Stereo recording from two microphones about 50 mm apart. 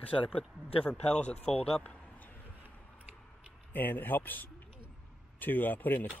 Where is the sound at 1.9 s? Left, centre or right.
Left.